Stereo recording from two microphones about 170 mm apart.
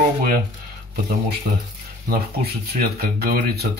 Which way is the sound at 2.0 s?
65° right (ahead or behind).